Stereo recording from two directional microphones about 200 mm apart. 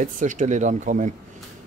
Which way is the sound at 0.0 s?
40° right (ahead or behind).